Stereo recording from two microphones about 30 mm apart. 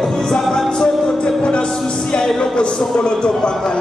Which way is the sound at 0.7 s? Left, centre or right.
Left.